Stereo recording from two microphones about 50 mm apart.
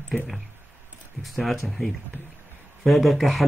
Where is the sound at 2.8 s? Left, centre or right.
Centre.